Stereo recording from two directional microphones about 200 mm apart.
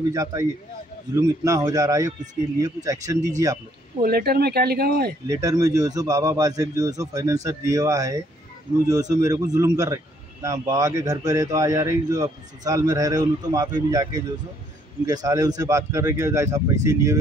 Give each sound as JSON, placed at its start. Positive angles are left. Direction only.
{"t": 0.1, "sound": "speech", "side_deg": -15}
{"t": 4.0, "sound": "speech", "side_deg": -50}
{"t": 5.2, "sound": "speech", "side_deg": -15}